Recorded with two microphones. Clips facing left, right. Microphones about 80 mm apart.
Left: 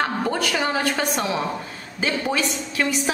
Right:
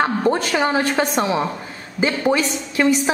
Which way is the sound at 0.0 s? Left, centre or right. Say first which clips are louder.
Right 5 dB; right.